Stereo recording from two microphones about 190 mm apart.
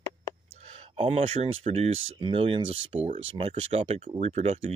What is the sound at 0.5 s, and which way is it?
Speech, 30° right (ahead or behind).